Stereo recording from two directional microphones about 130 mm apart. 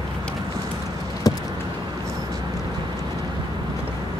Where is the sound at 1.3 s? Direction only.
30° left (ahead or behind).